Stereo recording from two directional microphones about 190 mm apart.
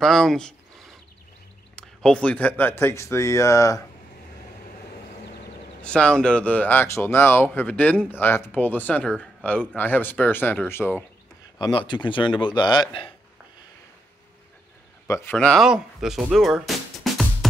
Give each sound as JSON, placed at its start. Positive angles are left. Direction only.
{"t": 0.0, "sound": "speech", "side_deg": 0}
{"t": 5.8, "sound": "speech", "side_deg": 5}
{"t": 11.5, "sound": "speech", "side_deg": 25}
{"t": 15.0, "sound": "speech", "side_deg": 15}
{"t": 15.3, "sound": "speech", "side_deg": 0}